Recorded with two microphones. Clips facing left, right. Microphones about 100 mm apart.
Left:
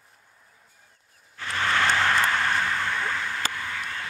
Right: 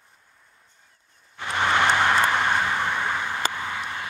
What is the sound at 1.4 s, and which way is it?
Vehicle, 20° right (ahead or behind).